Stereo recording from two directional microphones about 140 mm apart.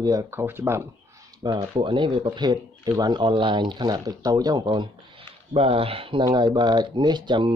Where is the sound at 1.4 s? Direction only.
35° right (ahead or behind).